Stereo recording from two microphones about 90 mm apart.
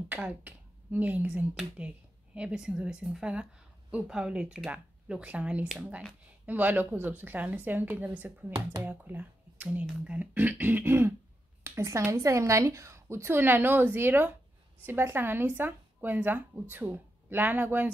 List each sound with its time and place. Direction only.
0.1 s speech: 20° right (ahead or behind)